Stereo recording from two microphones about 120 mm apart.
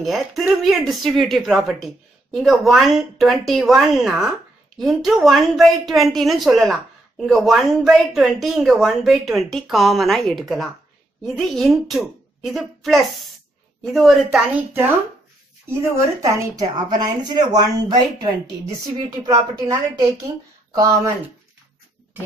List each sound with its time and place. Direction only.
0.0 s a woman's voice: centre (ahead or behind)
15.8 s a woman's voice: 25° right (ahead or behind)